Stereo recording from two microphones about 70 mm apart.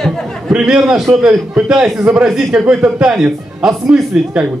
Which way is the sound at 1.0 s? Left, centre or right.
Centre.